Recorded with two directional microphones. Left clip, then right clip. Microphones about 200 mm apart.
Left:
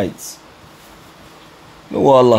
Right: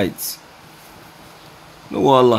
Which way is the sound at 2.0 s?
15° left (ahead or behind).